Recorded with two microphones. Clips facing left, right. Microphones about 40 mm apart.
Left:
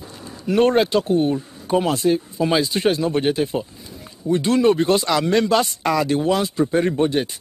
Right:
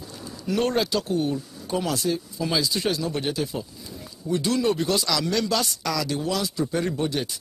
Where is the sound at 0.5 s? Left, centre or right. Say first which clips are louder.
Left 7 dB; left.